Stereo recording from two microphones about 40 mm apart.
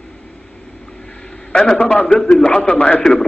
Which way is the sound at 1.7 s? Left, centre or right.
Left.